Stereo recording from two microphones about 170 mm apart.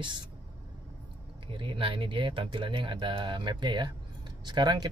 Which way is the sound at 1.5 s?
30° right (ahead or behind).